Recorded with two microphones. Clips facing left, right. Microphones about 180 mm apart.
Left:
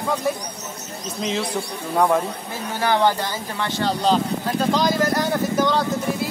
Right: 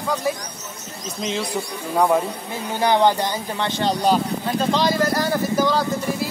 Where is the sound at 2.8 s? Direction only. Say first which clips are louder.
Right 2 dB; 20° right (ahead or behind).